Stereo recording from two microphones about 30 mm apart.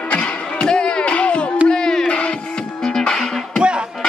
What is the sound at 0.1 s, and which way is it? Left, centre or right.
Music, left.